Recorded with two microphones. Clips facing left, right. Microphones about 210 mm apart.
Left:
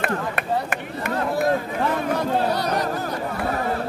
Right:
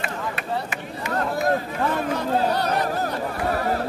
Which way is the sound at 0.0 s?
60° left (ahead or behind).